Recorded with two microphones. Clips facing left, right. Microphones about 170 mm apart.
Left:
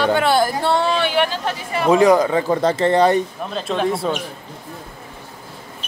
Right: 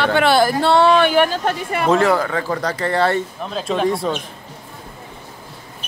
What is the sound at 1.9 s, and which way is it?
Speech, 15° left (ahead or behind).